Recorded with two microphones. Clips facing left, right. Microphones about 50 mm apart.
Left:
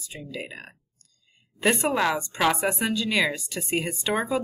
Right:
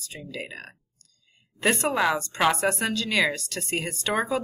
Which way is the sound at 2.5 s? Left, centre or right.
Centre.